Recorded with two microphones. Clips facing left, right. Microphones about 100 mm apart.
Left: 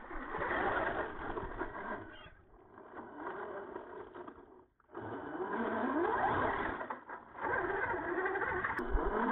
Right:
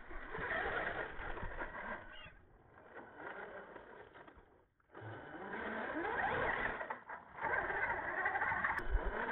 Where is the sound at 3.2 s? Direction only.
30° left (ahead or behind).